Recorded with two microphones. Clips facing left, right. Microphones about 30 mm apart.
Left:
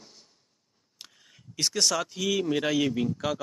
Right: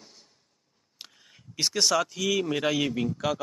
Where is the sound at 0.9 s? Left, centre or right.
Centre.